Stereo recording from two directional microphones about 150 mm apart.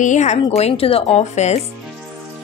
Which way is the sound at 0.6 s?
40° left (ahead or behind).